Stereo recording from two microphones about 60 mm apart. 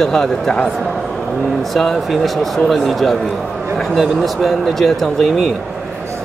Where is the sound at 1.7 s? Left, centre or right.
Centre.